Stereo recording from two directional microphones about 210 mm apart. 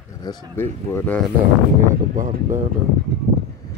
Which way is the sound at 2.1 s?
40° right (ahead or behind).